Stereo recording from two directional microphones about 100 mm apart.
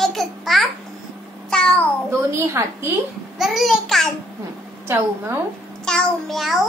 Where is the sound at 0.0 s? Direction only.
Centre (ahead or behind).